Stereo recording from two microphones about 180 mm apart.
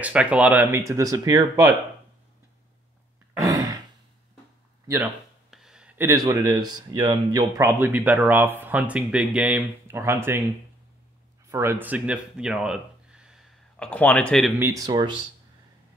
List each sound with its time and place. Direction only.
0.0 s speech: 5° right (ahead or behind)
3.4 s sigh: 20° right (ahead or behind)
4.8 s speech: 15° right (ahead or behind)
5.5 s speech: 5° right (ahead or behind)
11.4 s speech: 15° right (ahead or behind); by 14.5 s 5° left (ahead or behind)
14.6 s speech: 20° right (ahead or behind)